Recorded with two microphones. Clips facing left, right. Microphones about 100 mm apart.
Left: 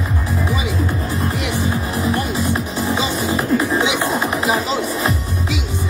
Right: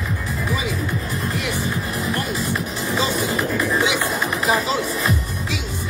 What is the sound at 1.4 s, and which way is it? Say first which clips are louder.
Music: left 3 dB; 20° left (ahead or behind).